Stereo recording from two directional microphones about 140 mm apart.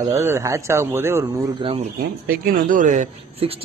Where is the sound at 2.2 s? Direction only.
90° right; by 3.6 s 45° right (ahead or behind).